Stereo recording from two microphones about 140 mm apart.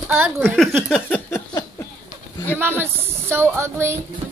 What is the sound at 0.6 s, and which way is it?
Speech, centre (ahead or behind).